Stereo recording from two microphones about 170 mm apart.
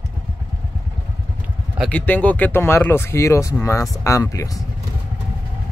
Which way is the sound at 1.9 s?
10° left (ahead or behind).